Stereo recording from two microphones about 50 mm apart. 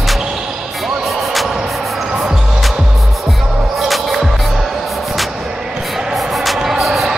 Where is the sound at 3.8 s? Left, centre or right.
Centre.